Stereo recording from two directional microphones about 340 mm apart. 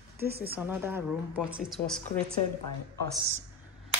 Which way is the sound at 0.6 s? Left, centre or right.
Centre.